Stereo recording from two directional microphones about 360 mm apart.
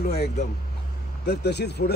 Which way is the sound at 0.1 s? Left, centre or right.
Left.